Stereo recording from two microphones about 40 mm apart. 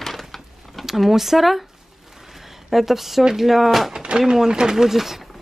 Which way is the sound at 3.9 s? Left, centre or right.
Right.